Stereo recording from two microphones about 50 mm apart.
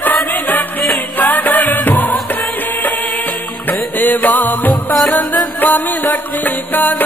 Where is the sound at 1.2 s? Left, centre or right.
Left.